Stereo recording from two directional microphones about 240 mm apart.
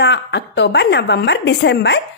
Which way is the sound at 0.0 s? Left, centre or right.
Left.